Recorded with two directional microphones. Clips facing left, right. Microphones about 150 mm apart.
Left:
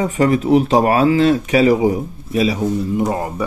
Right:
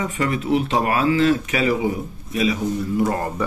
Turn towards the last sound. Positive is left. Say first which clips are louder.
# left 2 dB
turn(degrees=15)  # may be behind; listen again after turning